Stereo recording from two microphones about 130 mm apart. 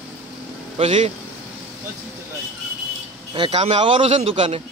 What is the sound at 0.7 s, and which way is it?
Speech, 55° right (ahead or behind).